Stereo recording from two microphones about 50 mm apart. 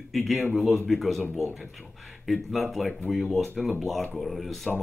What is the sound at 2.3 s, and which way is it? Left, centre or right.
Speech, centre.